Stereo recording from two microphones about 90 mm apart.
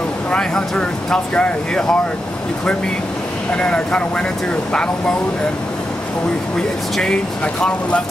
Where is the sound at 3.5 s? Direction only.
10° left (ahead or behind).